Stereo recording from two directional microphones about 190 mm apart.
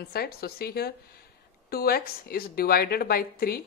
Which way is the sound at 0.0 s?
55° left (ahead or behind).